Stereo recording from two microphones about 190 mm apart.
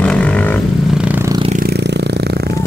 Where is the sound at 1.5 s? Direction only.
55° right (ahead or behind).